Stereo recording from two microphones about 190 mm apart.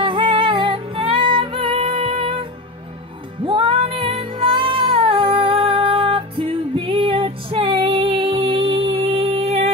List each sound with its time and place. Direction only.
0.0 s music: 25° right (ahead or behind)
3.4 s music: 30° right (ahead or behind)